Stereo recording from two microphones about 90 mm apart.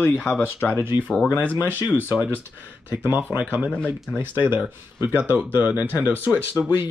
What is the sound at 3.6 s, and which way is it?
Speech, 10° left (ahead or behind).